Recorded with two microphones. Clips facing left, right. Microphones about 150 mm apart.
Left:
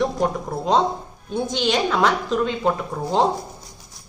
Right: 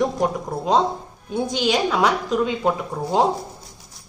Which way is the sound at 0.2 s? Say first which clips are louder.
Even; 5° right (ahead or behind).